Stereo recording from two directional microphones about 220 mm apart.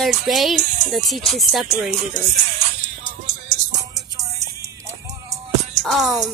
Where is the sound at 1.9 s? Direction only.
30° right (ahead or behind).